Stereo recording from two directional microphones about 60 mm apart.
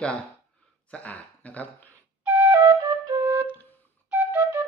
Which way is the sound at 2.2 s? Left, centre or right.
Right.